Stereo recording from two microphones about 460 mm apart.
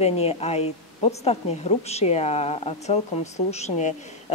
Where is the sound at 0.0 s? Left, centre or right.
Centre.